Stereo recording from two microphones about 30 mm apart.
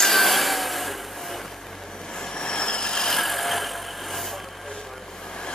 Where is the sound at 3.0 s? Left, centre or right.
Centre.